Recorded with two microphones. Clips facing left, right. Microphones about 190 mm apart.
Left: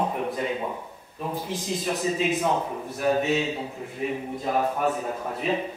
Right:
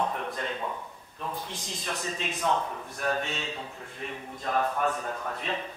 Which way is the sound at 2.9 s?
5° left (ahead or behind).